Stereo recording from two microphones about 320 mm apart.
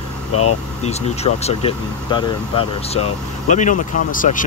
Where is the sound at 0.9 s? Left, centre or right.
Centre.